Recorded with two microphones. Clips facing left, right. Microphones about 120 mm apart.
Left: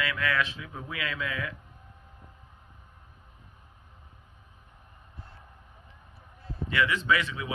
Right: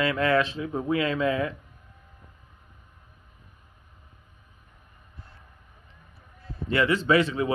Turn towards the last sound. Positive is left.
turn(degrees=-40)  # may be behind; listen again after turning